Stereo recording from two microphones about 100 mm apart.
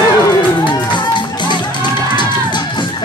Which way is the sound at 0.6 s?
50° left (ahead or behind).